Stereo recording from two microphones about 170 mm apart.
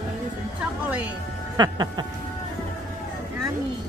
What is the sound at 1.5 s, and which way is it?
Speech, 25° right (ahead or behind).